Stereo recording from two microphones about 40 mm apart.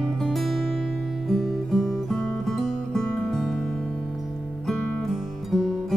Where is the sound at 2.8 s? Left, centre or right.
Centre.